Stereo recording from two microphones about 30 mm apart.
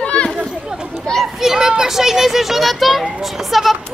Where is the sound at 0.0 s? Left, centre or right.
Left.